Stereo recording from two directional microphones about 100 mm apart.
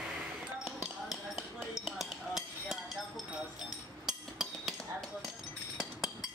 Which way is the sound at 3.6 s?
5° right (ahead or behind).